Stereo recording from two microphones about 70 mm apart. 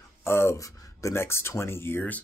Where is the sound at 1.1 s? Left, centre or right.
Left.